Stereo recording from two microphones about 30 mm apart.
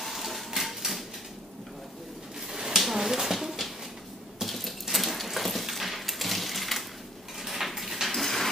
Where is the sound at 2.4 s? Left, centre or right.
Centre.